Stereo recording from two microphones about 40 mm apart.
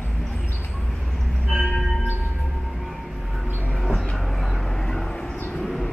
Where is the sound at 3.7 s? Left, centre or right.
Centre.